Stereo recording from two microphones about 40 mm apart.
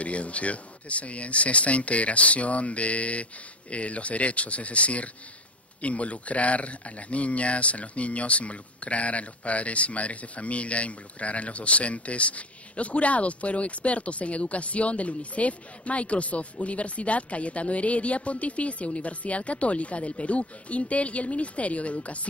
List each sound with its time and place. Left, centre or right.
0.0 s speech: left